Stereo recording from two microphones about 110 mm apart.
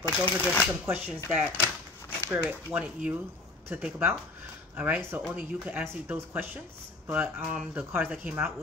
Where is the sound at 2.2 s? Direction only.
10° right (ahead or behind).